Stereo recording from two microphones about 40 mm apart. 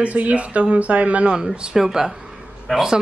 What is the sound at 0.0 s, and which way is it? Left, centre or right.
Speech, right.